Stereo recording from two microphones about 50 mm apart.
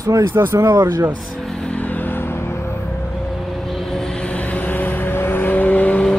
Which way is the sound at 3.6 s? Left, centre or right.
Centre.